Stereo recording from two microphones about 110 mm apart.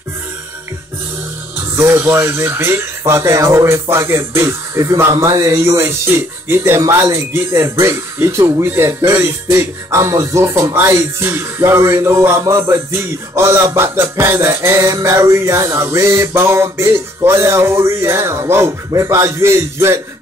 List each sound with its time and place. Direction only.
1.8 s speech: 20° right (ahead or behind)